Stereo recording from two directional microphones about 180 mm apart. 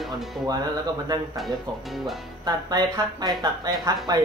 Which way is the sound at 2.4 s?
20° right (ahead or behind).